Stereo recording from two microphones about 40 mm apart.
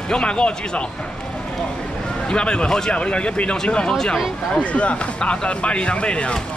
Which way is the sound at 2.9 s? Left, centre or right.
Left.